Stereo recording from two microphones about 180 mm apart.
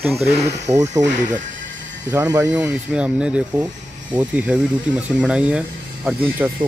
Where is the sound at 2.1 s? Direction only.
15° right (ahead or behind).